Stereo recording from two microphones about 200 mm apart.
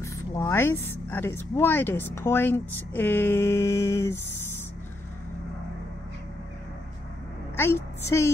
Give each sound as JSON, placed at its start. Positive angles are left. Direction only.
{"t": 0.0, "sound": "speech", "side_deg": 15}
{"t": 7.5, "sound": "speech", "side_deg": 10}